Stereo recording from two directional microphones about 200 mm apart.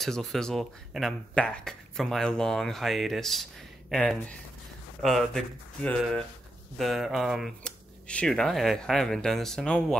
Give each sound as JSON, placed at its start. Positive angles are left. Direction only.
{"t": 0.0, "sound": "speech", "side_deg": 0}